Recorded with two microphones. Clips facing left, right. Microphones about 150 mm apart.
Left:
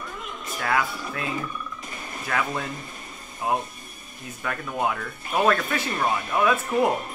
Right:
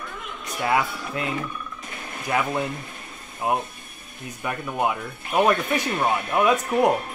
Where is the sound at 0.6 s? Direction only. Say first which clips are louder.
Right 3 dB; 20° right (ahead or behind).